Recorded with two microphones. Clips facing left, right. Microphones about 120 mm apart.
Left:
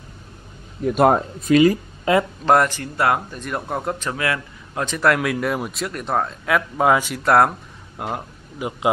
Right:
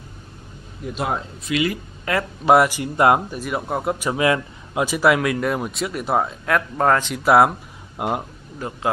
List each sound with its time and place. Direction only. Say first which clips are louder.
0.8 s speech: left 9 dB; 55° left (ahead or behind)
2.1 s speech: left 5 dB; 25° left (ahead or behind)
2.4 s speech: right 2 dB; 10° right (ahead or behind)
3.3 s speech: right 2 dB; 5° right (ahead or behind)
4.1 s a man's voice: right 9 dB; 15° right (ahead or behind)
4.8 s speech: right 1 dB; 5° right (ahead or behind)
7.2 s speech: right 1 dB; 5° right (ahead or behind)
8.0 s speech: right 4 dB; 20° right (ahead or behind)
8.5 s a man's voice: left 3 dB; 15° left (ahead or behind)